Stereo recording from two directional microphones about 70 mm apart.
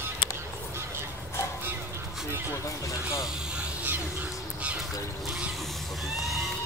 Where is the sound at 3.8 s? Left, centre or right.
Right.